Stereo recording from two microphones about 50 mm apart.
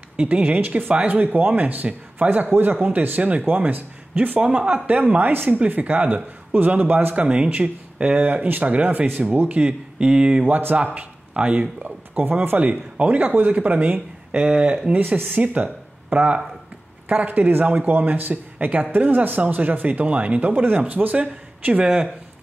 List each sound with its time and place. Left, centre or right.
0.2 s speech: right
4.4 s speech: right
5.3 s speech: right
14.9 s speech: right